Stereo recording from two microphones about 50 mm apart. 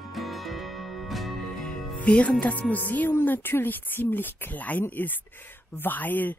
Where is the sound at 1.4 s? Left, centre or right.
Centre; by 6.3 s left.